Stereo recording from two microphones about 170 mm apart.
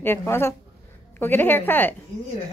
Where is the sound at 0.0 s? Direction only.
15° left (ahead or behind).